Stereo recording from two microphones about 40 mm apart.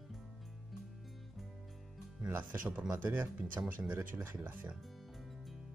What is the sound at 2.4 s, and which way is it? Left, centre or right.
Speech, right.